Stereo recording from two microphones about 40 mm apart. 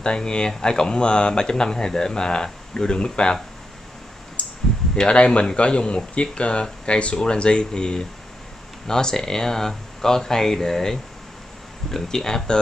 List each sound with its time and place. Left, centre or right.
0.0 s speech: left
4.4 s a sound: left
4.9 s speech: left